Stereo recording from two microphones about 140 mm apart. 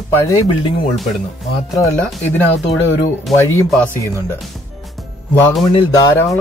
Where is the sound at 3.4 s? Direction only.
15° left (ahead or behind).